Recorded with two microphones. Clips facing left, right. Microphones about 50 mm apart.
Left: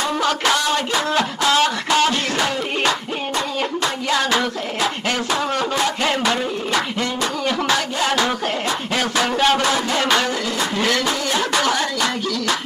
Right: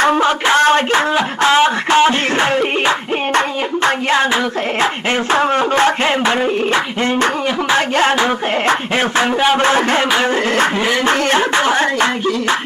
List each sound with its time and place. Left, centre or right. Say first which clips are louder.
0.2 s a sound: right 6 dB; right
3.3 s hands: right 5 dB; right
5.3 s speech: right 9 dB; right
6.2 s music: right 6 dB; right
9.6 s a man's voice: right 6 dB; right
11.1 s music: right 7 dB; right